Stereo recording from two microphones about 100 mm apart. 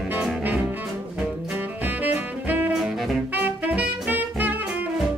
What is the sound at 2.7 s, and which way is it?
Saxophone, 5° right (ahead or behind).